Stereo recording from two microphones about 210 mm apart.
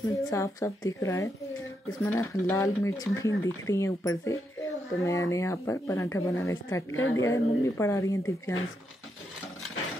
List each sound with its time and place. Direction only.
0.2 s speech: 15° left (ahead or behind)
6.9 s a woman's voice: 70° left (ahead or behind)
7.2 s speech: 15° left (ahead or behind)